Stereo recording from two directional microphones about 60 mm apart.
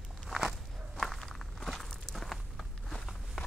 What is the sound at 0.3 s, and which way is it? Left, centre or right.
Walk, centre.